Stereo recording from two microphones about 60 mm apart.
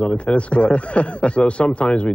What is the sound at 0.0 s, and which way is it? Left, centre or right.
Speech, centre.